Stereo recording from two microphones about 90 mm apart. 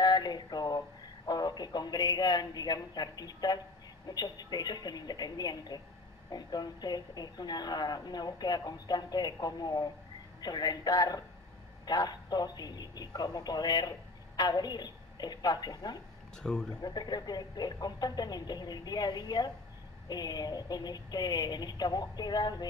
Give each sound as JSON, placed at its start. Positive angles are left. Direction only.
{"t": 0.0, "sound": "a man's voice", "side_deg": 50}
{"t": 16.4, "sound": "speech", "side_deg": 10}
{"t": 16.8, "sound": "a man's voice", "side_deg": 50}